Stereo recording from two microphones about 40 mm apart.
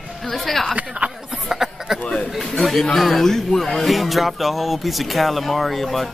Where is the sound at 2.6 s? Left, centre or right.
Centre.